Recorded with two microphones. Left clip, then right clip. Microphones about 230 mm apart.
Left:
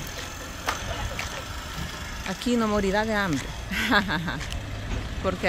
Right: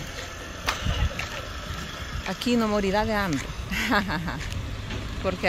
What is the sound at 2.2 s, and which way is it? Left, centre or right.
Speech, centre.